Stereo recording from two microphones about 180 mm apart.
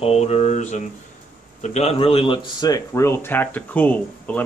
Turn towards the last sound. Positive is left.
turn(degrees=10)  # may be behind; listen again after turning